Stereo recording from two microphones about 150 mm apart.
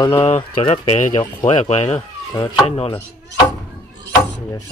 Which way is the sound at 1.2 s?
30° left (ahead or behind).